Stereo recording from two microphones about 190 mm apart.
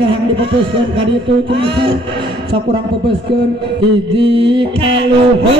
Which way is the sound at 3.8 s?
70° right (ahead or behind).